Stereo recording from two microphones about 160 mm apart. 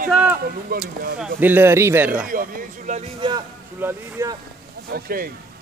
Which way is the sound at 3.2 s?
30° right (ahead or behind).